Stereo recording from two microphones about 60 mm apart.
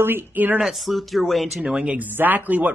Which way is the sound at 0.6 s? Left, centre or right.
Centre.